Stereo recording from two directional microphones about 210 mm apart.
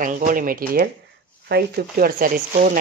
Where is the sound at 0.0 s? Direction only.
40° right (ahead or behind).